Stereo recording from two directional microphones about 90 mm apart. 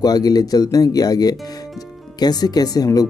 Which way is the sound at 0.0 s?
45° left (ahead or behind).